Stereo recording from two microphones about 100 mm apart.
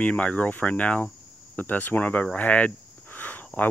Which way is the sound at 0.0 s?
15° left (ahead or behind).